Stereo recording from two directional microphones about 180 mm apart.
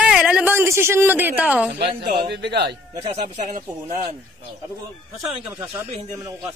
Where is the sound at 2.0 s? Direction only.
65° right (ahead or behind).